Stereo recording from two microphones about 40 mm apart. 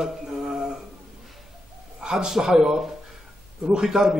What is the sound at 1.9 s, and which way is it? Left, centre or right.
A man's voice, centre.